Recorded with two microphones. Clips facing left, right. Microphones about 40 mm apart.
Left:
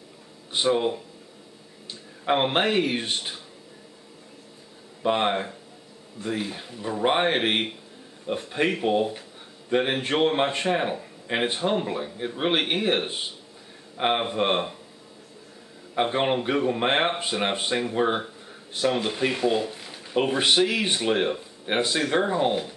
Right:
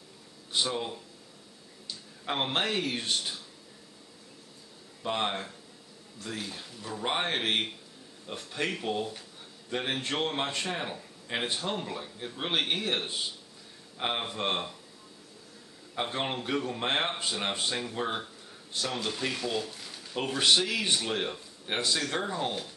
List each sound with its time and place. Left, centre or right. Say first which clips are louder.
0.5 s speech: left 8 dB; left
5.0 s speech: left 8 dB; left
15.9 s speech: left 9 dB; left